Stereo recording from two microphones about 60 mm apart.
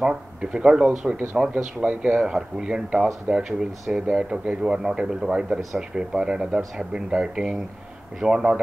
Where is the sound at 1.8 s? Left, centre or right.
Right.